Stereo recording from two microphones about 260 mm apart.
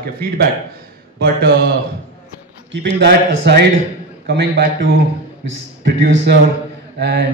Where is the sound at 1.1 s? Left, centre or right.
Right.